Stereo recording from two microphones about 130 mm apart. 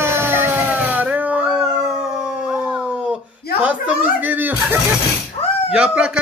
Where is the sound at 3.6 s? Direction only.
10° right (ahead or behind).